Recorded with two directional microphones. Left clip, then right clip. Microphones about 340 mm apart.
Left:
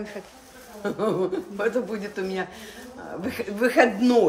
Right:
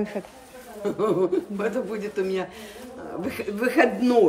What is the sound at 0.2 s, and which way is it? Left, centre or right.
Speech, centre.